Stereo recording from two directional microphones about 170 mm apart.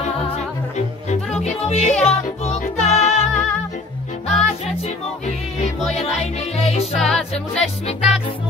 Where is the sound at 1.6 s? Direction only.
40° left (ahead or behind).